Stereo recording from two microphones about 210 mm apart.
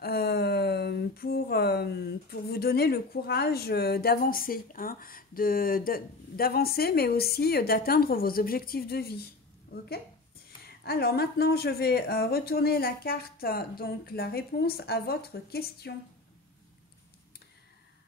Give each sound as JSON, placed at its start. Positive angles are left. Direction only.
{"t": 0.0, "sound": "speech", "side_deg": 50}